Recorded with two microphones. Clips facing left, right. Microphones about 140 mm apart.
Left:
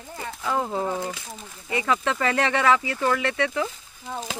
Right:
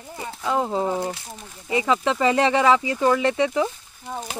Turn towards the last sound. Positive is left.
turn(degrees=-20)  # may be behind; listen again after turning